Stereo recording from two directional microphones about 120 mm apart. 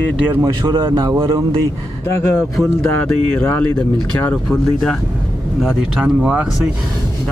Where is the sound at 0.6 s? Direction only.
45° right (ahead or behind).